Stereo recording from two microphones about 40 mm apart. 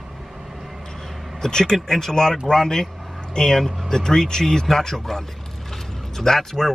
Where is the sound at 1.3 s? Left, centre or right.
Centre.